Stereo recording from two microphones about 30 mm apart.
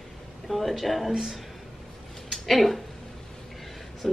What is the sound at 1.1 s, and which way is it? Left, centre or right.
Speech, centre.